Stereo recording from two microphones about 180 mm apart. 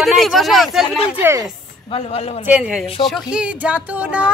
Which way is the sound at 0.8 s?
30° left (ahead or behind).